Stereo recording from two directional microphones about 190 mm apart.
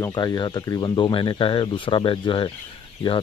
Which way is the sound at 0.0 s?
20° left (ahead or behind).